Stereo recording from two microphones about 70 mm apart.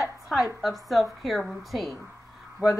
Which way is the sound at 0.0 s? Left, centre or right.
Centre.